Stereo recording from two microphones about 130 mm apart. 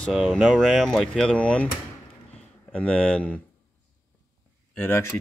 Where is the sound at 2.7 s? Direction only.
10° left (ahead or behind).